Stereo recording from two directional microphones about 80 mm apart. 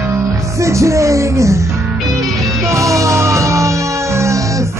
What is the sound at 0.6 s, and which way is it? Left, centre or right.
Music, right.